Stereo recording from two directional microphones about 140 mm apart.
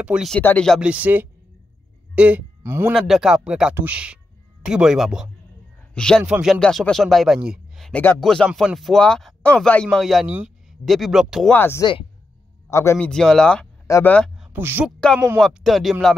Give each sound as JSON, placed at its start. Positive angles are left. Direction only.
{"t": 0.0, "sound": "speech", "side_deg": -5}
{"t": 0.3, "sound": "speech", "side_deg": 10}
{"t": 0.7, "sound": "speech", "side_deg": -5}
{"t": 2.9, "sound": "a man's voice", "side_deg": 0}
{"t": 6.2, "sound": "speech", "side_deg": -5}
{"t": 7.9, "sound": "speech", "side_deg": 15}
{"t": 11.5, "sound": "speech", "side_deg": 15}
{"t": 13.0, "sound": "speech", "side_deg": 5}
{"t": 14.3, "sound": "a sound", "side_deg": -5}
{"t": 14.6, "sound": "speech", "side_deg": -15}
{"t": 15.3, "sound": "speech", "side_deg": 0}